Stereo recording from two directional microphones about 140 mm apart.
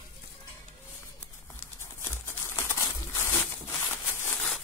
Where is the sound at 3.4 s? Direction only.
5° left (ahead or behind).